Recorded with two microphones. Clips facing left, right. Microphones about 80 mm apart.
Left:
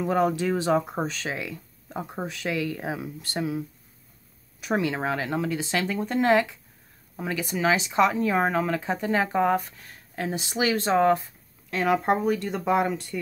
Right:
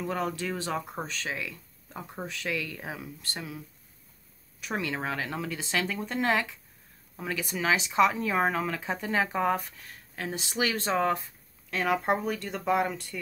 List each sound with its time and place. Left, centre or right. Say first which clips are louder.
0.0 s speech: left 8 dB; left
4.6 s speech: left 6 dB; centre